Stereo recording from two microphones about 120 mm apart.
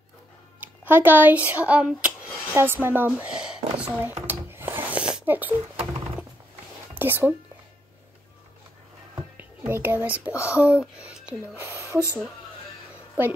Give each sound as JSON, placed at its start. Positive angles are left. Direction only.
{"t": 0.6, "sound": "speech", "side_deg": -15}
{"t": 4.0, "sound": "a sound", "side_deg": -20}
{"t": 7.0, "sound": "speech", "side_deg": -15}
{"t": 9.1, "sound": "a child's voice", "side_deg": -15}